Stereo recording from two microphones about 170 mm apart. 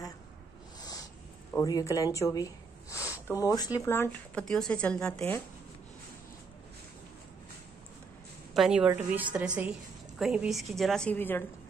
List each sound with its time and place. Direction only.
0.7 s a sound: 20° left (ahead or behind)
1.6 s a woman's voice: 20° left (ahead or behind)
8.5 s a woman's voice: 5° right (ahead or behind); by 11.4 s 10° left (ahead or behind)